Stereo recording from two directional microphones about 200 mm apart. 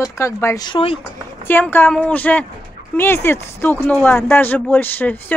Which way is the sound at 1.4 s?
10° left (ahead or behind).